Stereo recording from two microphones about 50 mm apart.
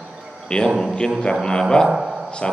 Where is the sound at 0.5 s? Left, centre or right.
Centre.